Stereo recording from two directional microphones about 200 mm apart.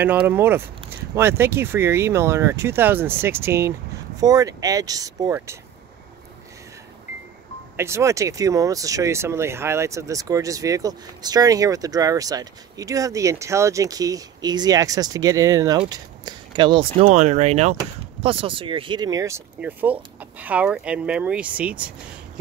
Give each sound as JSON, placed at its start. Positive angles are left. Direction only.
{"t": 0.0, "sound": "speech", "side_deg": -10}
{"t": 7.7, "sound": "speech", "side_deg": -15}
{"t": 17.1, "sound": "speech", "side_deg": -35}